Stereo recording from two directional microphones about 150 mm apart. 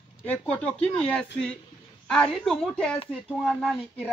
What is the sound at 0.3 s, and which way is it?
A man's voice, 5° left (ahead or behind).